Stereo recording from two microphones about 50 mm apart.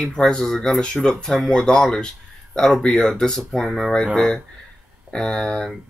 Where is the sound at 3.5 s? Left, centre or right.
Centre.